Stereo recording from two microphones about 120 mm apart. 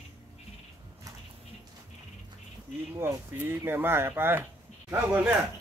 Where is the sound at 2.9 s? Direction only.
20° right (ahead or behind).